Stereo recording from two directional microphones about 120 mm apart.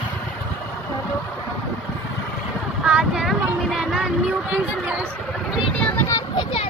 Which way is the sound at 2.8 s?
5° right (ahead or behind).